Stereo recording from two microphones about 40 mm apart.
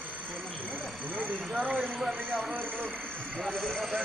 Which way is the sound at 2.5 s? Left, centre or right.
Right.